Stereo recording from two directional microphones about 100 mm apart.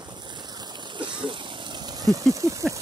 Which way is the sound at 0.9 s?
55° right (ahead or behind).